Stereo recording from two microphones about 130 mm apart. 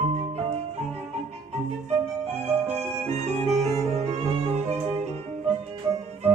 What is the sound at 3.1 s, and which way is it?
Music, 55° right (ahead or behind).